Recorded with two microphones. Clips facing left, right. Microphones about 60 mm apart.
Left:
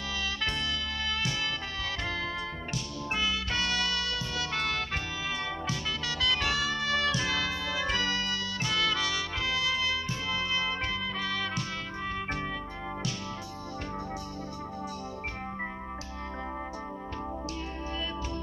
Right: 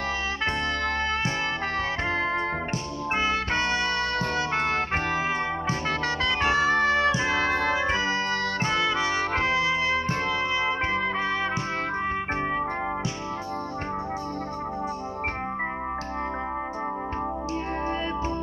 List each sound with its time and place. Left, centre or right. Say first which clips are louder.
2.1 s music: right 9 dB; right
7.5 s organ: right 9 dB; right
7.8 s trumpet: right 5 dB; right
9.3 s music: right 7 dB; right
10.5 s music: right 6 dB; right